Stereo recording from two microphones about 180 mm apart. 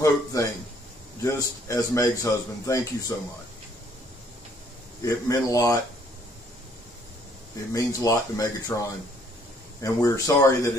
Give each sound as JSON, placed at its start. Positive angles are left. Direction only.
{"t": 0.0, "sound": "a man's voice", "side_deg": 20}
{"t": 5.0, "sound": "a man's voice", "side_deg": 20}
{"t": 7.7, "sound": "a man's voice", "side_deg": 20}